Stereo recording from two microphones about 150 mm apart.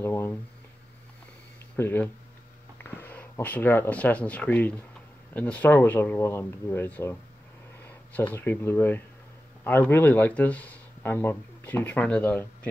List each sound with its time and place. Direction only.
0.0 s speech: 15° left (ahead or behind)
1.8 s speech: 15° left (ahead or behind)